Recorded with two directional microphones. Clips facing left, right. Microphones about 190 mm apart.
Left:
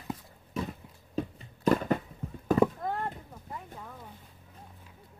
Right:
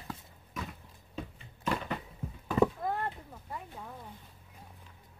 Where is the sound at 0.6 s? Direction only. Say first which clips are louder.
Left 7 dB; 30° left (ahead or behind).